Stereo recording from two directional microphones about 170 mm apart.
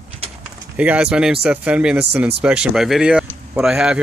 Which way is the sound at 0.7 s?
5° right (ahead or behind).